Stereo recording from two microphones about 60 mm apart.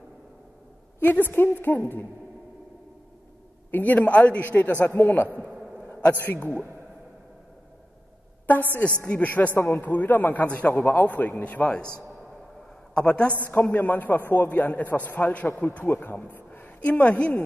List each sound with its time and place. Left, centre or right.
1.3 s a woman's voice: left
3.7 s a man's voice: left
5.4 s a sound: centre
5.9 s a man's voice: left
8.7 s a man's voice: left
9.6 s a woman's voice: left
12.9 s a woman's voice: centre
13.5 s a man's voice: left
16.3 s a sound: left